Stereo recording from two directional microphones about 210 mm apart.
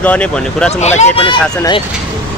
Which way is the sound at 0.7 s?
35° left (ahead or behind).